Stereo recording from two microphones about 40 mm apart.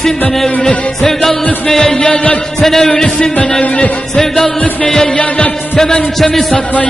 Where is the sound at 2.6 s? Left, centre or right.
Centre.